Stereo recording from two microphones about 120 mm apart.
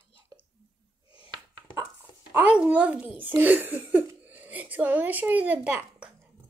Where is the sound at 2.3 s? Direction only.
10° right (ahead or behind).